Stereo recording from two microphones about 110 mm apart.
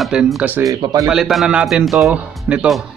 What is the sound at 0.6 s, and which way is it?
Speech, 30° right (ahead or behind).